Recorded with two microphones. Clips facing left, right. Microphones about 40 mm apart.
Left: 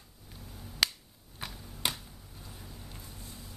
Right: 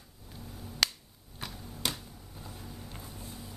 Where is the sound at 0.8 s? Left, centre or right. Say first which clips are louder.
Even; centre.